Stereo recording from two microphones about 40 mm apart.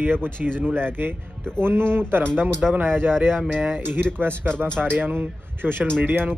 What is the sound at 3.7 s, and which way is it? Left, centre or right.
A man's voice, right.